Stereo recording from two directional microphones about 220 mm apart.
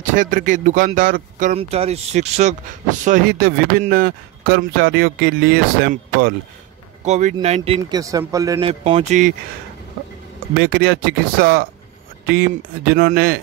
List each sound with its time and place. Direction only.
0.0 s speech: 35° right (ahead or behind)
7.1 s speech: 35° right (ahead or behind)
8.0 s speech: 15° right (ahead or behind); by 9.3 s 30° right (ahead or behind)
10.6 s speech: 45° right (ahead or behind)